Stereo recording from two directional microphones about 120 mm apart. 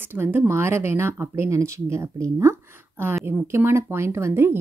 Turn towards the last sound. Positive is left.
turn(degrees=-20)  # may be behind; listen again after turning